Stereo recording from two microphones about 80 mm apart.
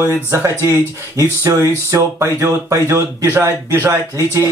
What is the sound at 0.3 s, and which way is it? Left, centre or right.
Speech, right.